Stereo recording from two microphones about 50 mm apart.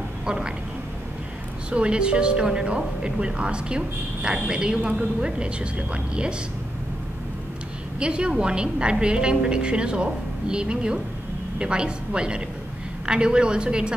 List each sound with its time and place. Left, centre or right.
0.2 s a sound: centre
1.7 s speech: right
8.0 s a woman's voice: centre